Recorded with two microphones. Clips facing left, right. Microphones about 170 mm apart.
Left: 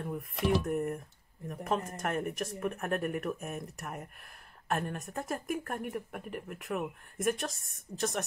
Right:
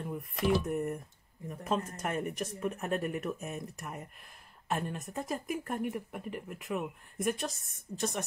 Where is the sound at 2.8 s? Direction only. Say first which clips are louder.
Left 1 dB; 55° left (ahead or behind).